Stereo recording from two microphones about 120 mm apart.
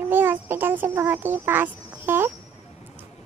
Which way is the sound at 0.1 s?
15° right (ahead or behind).